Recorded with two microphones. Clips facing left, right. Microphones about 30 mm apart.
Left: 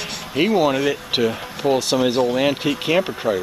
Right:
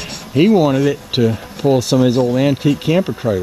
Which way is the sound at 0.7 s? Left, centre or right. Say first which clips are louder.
Right 4 dB; centre.